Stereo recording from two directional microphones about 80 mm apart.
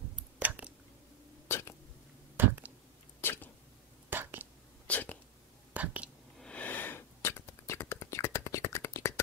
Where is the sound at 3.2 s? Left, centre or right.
Left.